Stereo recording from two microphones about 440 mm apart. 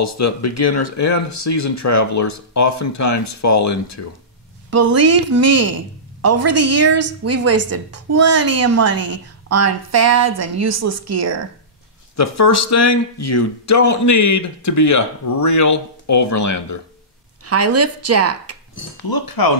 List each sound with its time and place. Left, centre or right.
0.0 s speech: left
4.6 s a woman's voice: right
12.2 s speech: left
17.5 s a woman's voice: right
19.0 s speech: left